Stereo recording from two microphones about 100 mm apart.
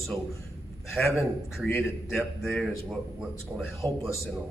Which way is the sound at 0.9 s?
Centre (ahead or behind).